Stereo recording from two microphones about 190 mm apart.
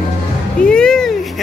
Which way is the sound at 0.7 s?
5° left (ahead or behind).